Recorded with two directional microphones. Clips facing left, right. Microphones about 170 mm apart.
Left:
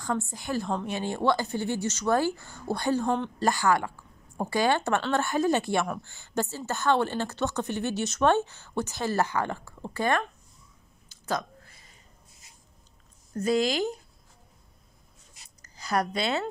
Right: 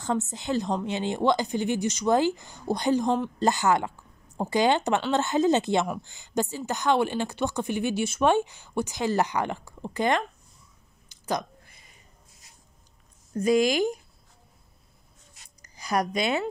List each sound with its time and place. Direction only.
0.0 s speech: 20° right (ahead or behind)
11.2 s a sound: 15° right (ahead or behind)
13.4 s speech: 15° right (ahead or behind)
15.6 s a woman's voice: 15° right (ahead or behind)